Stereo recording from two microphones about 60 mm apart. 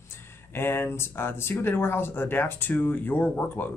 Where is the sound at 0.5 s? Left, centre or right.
Left.